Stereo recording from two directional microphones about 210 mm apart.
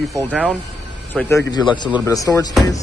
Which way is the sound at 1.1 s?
10° left (ahead or behind).